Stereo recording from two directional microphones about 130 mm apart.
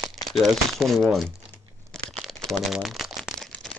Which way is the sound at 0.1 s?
Centre (ahead or behind).